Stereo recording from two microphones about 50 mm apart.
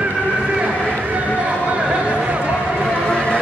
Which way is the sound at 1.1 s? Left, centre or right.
Right.